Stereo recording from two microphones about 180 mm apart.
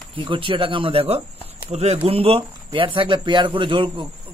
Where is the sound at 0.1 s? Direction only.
30° right (ahead or behind).